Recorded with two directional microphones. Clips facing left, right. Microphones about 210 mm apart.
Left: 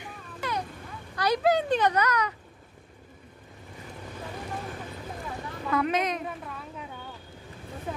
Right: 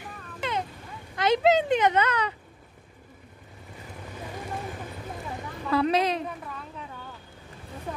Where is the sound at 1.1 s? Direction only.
25° right (ahead or behind).